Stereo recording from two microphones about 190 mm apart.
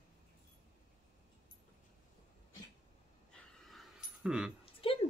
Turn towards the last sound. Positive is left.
turn(degrees=30)  # may be behind; listen again after turning